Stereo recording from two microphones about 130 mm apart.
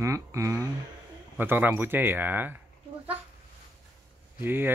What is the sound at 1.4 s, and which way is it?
Speech, 15° right (ahead or behind).